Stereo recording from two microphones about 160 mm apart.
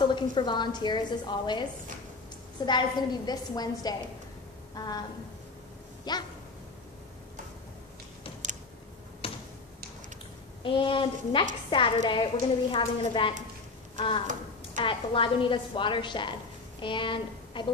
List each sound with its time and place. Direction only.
0.0 s a woman's voice: 30° left (ahead or behind)
6.1 s a woman's voice: 25° left (ahead or behind)
9.2 s a sound: 35° left (ahead or behind)
10.6 s a woman's voice: 30° left (ahead or behind)
14.2 s a sound: 50° right (ahead or behind)
14.9 s a woman's voice: 30° left (ahead or behind)